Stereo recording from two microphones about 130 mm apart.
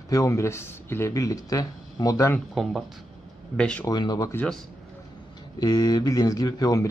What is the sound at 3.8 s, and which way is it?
Speech, 30° left (ahead or behind).